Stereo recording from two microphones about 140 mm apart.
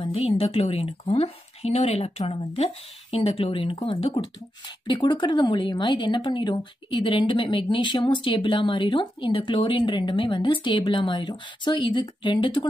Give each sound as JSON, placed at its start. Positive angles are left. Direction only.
{"t": 0.1, "sound": "a woman's voice", "side_deg": 45}